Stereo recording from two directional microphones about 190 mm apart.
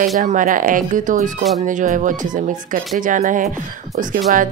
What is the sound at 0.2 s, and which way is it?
Speech, 40° right (ahead or behind).